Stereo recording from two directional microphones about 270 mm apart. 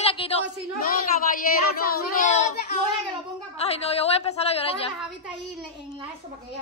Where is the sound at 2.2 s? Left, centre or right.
Left.